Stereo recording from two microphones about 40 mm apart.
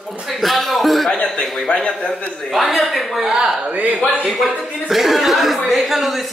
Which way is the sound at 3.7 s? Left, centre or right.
Right.